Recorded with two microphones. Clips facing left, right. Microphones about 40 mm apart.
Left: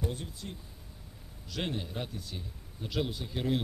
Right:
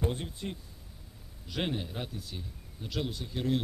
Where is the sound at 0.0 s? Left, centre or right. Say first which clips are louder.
Right 4 dB; right.